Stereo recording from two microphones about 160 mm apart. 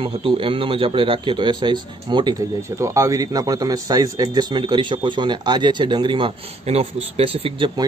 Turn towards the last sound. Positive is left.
turn(degrees=-30)  # may be behind; listen again after turning